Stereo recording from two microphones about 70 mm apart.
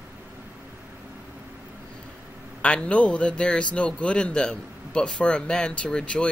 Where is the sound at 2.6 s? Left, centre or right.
Centre.